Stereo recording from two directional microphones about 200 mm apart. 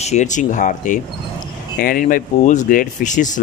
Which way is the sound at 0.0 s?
35° left (ahead or behind).